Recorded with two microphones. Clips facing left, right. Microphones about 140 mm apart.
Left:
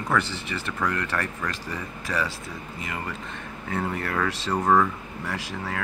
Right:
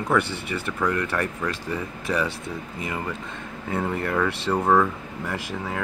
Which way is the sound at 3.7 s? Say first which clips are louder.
Right 3 dB; 20° right (ahead or behind).